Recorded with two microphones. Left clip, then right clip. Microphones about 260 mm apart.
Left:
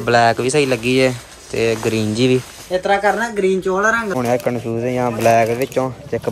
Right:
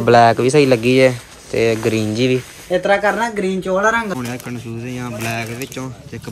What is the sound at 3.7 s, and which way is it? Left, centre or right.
Speech, centre.